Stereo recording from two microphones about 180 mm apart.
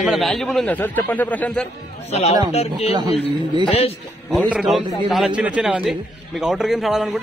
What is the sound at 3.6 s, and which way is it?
Speech, 35° left (ahead or behind).